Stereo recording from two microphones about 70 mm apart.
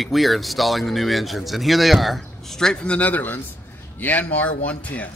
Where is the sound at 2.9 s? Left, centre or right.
Left.